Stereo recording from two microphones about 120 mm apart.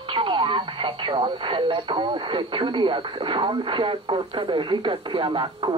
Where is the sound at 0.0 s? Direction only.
45° right (ahead or behind).